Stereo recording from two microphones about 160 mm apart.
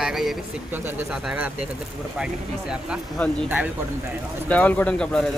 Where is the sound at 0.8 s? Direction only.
5° right (ahead or behind).